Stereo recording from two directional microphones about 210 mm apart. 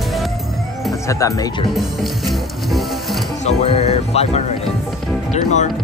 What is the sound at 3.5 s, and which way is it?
Speech, 30° left (ahead or behind).